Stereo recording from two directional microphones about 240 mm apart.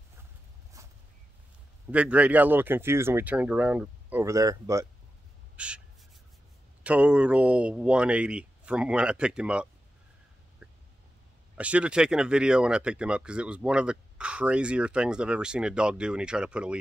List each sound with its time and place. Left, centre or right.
0.8 s a sound: centre
1.9 s speech: centre
5.6 s crow: centre
6.8 s speech: centre
10.6 s a sound: centre
11.5 s speech: centre